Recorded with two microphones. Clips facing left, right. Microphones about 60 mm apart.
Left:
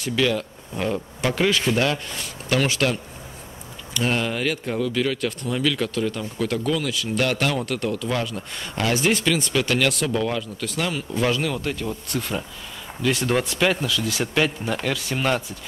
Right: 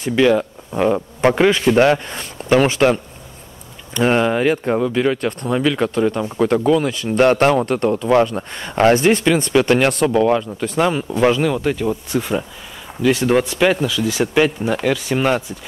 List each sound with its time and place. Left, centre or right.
0.0 s speech: right
9.2 s speech: right
11.3 s speech: centre